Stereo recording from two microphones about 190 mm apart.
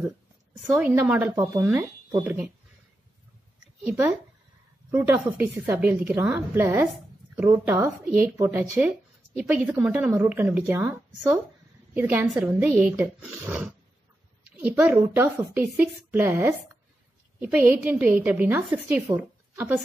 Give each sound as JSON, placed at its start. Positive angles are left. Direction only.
{"t": 0.7, "sound": "a woman's voice", "side_deg": -10}
{"t": 3.8, "sound": "a woman's voice", "side_deg": -15}